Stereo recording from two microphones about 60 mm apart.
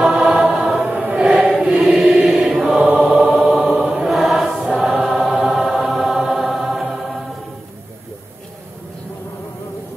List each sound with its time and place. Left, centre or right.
0.0 s choir: centre
0.7 s choir: centre
2.8 s choir: right
3.1 s choir: centre
5.3 s music: centre